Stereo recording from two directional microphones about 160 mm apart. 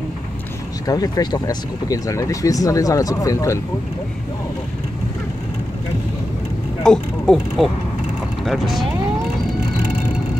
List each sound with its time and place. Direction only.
0.8 s speech: 25° left (ahead or behind)
6.8 s speech: 5° left (ahead or behind)